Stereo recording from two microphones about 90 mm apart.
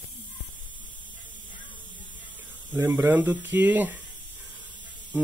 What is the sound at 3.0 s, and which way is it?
A man's voice, 25° right (ahead or behind).